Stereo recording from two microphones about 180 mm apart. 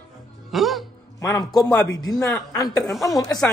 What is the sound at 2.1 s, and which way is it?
A man's voice, 20° left (ahead or behind).